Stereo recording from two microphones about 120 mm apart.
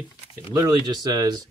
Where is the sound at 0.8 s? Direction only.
35° right (ahead or behind).